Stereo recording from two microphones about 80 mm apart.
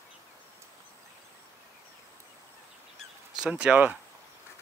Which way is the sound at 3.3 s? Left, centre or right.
Centre.